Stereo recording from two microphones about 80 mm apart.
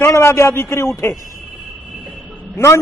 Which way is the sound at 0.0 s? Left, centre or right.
Left.